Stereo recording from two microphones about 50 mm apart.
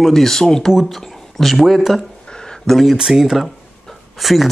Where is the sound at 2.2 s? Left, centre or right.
Centre.